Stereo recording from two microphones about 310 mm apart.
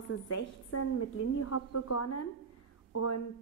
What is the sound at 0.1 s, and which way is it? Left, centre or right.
A woman's voice, left.